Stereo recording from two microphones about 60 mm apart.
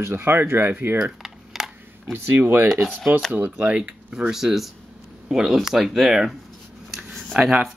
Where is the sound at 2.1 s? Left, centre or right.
Right.